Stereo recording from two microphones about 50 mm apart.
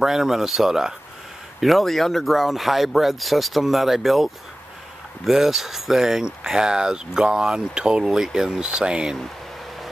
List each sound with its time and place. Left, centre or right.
0.0 s speech: centre